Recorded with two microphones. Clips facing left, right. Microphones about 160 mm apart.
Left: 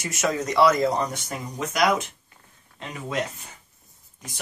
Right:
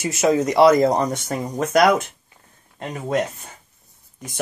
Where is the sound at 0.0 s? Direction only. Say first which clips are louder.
Right 8 dB; 30° right (ahead or behind); by 3.2 s 45° right (ahead or behind).